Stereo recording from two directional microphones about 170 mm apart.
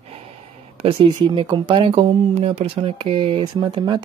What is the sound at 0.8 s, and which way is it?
Speech, 30° right (ahead or behind).